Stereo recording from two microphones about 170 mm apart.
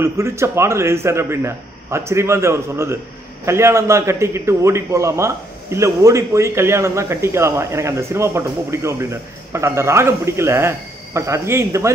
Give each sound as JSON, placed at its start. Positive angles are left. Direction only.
{"t": 0.0, "sound": "a man's voice", "side_deg": -15}